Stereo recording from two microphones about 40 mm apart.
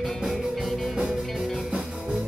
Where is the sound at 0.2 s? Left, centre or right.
Centre.